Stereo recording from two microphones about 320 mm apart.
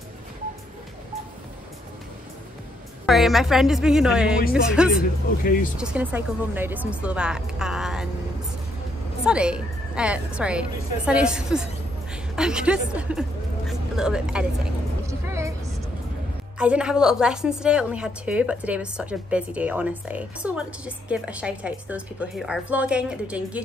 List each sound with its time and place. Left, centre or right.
3.1 s a woman's voice: centre
5.4 s speech: left
5.8 s a woman's voice: centre
9.2 s a woman's voice: centre
13.7 s vehicle: centre
16.5 s a woman's voice: centre